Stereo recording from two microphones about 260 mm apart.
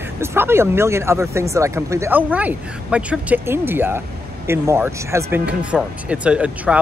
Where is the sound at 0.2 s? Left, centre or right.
Centre.